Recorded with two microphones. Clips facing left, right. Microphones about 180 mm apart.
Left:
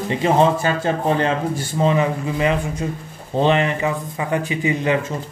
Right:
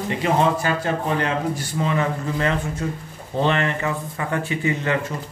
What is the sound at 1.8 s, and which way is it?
Mantra, 15° left (ahead or behind).